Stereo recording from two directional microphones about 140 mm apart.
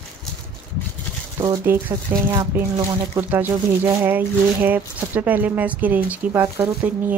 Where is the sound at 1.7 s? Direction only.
15° right (ahead or behind).